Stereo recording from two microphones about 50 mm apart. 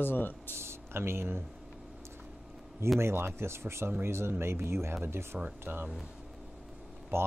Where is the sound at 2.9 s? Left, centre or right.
Right.